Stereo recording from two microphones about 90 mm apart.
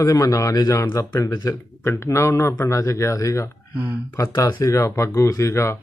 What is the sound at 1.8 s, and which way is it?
A man's voice, 30° left (ahead or behind).